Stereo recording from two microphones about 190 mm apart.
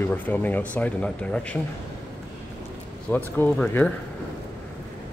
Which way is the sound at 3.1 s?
10° left (ahead or behind).